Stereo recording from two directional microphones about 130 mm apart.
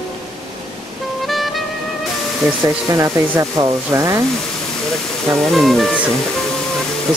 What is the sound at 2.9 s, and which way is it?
Speech, 20° right (ahead or behind).